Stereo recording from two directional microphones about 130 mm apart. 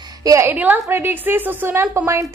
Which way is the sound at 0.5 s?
15° right (ahead or behind).